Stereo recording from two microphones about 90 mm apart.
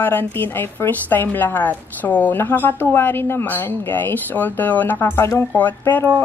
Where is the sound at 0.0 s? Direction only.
20° left (ahead or behind).